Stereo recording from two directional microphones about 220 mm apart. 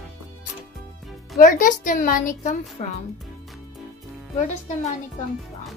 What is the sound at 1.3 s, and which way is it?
A child's voice, 35° left (ahead or behind).